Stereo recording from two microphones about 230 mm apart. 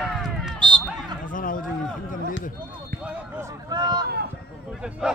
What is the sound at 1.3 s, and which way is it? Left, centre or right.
Speech, left.